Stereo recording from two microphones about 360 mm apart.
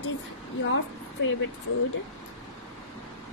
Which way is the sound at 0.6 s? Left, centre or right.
Left.